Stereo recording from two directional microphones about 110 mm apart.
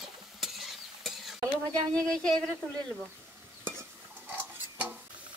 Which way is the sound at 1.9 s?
5° left (ahead or behind).